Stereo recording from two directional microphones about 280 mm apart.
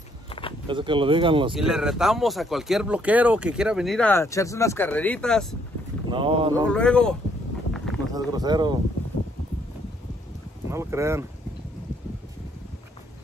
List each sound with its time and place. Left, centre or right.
0.3 s a sound: centre
0.7 s speech: centre
1.5 s speech: centre
6.0 s speech: centre
6.7 s speech: centre
7.7 s a sound: centre
8.1 s speech: centre
10.7 s speech: centre